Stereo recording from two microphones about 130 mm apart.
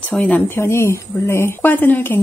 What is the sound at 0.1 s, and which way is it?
Speech, 15° left (ahead or behind).